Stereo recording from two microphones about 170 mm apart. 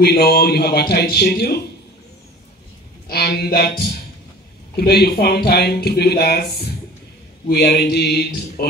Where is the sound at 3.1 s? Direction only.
65° left (ahead or behind).